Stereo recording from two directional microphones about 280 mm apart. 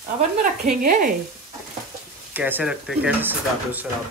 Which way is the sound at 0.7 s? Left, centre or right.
Right.